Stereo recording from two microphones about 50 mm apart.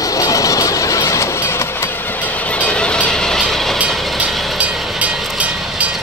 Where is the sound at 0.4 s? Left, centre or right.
Left; by 3.7 s centre.